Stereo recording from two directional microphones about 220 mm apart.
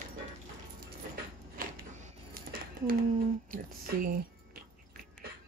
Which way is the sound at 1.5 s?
40° right (ahead or behind).